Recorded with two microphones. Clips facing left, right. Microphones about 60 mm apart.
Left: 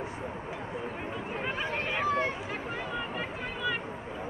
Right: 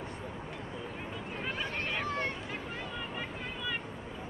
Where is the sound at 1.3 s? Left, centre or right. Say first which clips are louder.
Left 4 dB; centre.